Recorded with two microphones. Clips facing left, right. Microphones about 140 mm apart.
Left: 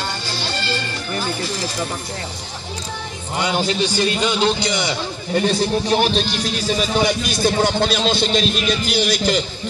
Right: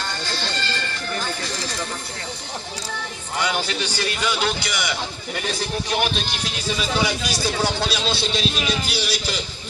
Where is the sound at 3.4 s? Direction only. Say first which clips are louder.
Left 5 dB; 25° left (ahead or behind).